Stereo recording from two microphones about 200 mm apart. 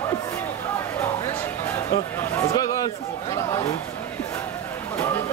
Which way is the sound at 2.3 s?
20° left (ahead or behind).